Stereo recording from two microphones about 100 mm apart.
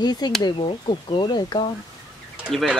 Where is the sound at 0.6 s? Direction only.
60° left (ahead or behind); by 1.7 s 45° left (ahead or behind).